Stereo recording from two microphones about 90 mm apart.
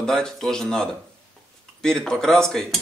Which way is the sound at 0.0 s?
5° left (ahead or behind).